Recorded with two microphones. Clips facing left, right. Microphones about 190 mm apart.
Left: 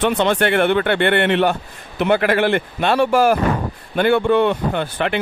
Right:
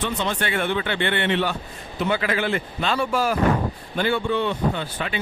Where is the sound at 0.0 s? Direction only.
65° left (ahead or behind).